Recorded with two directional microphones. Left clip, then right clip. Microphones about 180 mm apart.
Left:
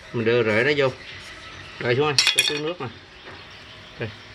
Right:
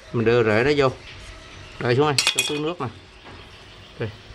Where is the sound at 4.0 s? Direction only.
5° right (ahead or behind).